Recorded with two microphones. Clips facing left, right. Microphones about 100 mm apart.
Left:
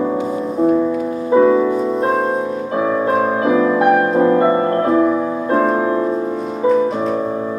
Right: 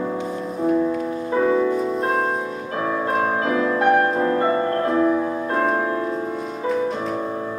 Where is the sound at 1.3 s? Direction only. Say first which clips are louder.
Left 7 dB; 5° left (ahead or behind).